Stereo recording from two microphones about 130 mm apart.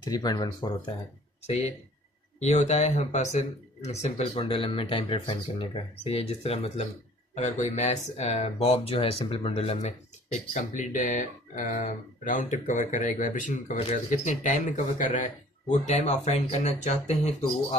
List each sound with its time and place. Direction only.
0.0 s speech: 30° left (ahead or behind)
1.5 s speech: 55° left (ahead or behind); by 15.3 s 90° left
15.9 s speech: 55° left (ahead or behind)